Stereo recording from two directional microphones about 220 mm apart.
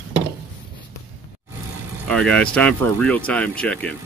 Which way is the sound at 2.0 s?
5° left (ahead or behind).